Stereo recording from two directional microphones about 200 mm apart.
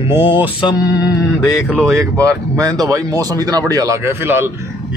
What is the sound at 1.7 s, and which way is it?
Speech, centre (ahead or behind).